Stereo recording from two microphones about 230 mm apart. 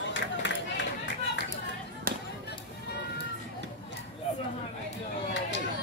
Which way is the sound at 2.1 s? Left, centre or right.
Right.